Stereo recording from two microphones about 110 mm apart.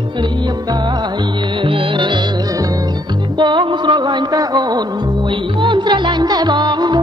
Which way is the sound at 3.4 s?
45° right (ahead or behind).